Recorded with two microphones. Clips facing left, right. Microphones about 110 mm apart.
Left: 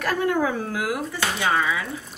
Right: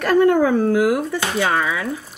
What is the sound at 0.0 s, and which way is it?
Speech, 50° right (ahead or behind).